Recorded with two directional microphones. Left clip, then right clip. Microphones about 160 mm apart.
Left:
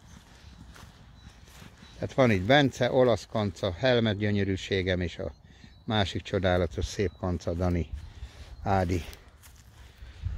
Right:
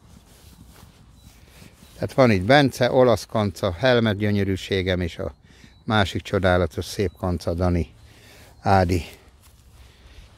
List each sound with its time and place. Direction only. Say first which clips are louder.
2.0 s speech: right 6 dB; 45° right (ahead or behind)